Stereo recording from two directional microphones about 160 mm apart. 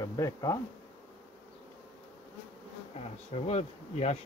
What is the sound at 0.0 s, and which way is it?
Speech, 20° left (ahead or behind).